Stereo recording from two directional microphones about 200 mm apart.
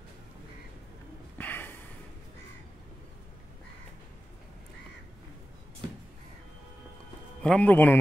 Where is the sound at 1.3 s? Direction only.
10° left (ahead or behind).